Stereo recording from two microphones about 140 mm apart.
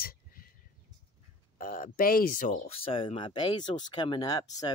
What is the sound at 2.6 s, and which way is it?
Speech, 40° left (ahead or behind).